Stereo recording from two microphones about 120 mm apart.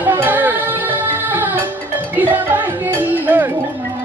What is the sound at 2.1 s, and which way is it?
Music, 15° right (ahead or behind).